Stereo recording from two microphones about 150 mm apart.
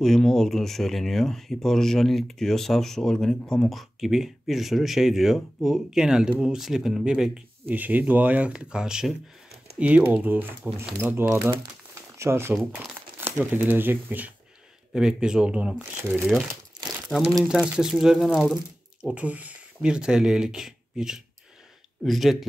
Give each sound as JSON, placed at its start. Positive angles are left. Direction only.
{"t": 0.0, "sound": "speech", "side_deg": 5}
{"t": 17.1, "sound": "speech", "side_deg": -5}